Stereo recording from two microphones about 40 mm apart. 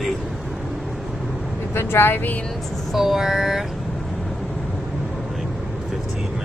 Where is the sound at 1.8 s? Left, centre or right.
Left.